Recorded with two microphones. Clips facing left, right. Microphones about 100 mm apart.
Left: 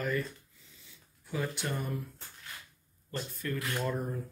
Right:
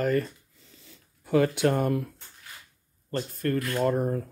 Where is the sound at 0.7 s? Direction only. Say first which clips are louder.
Right 7 dB; 50° right (ahead or behind); by 2.1 s 70° right (ahead or behind).